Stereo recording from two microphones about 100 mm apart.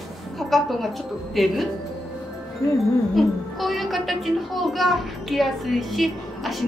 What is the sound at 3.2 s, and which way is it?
A child's voice, centre (ahead or behind).